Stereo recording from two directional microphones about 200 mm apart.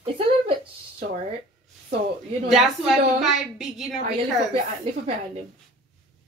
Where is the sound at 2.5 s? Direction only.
Centre (ahead or behind).